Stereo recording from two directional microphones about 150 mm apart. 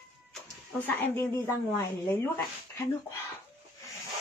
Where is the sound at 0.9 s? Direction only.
15° left (ahead or behind).